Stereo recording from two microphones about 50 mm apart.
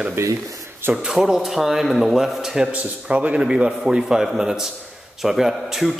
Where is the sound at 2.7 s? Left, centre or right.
Right.